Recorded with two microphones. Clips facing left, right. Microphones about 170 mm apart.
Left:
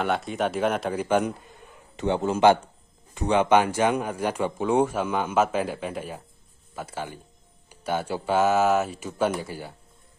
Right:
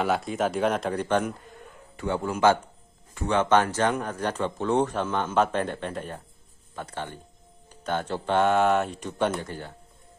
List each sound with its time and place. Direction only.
0.0 s speech: centre (ahead or behind)
2.0 s a man's voice: 20° left (ahead or behind)